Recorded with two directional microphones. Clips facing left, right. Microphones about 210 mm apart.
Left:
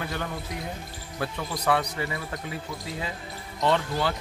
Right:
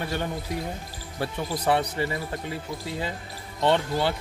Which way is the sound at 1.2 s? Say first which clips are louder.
Right 2 dB; 25° right (ahead or behind).